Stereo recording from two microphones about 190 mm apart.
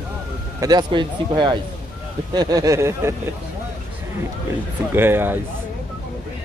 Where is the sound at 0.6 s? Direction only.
25° right (ahead or behind).